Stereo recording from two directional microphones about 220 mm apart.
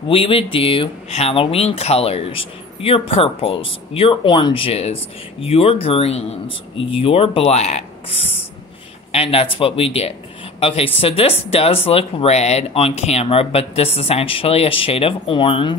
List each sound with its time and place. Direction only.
0.1 s speech: 25° left (ahead or behind)